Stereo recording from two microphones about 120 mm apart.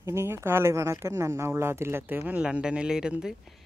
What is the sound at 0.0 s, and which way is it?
Speech, 20° right (ahead or behind).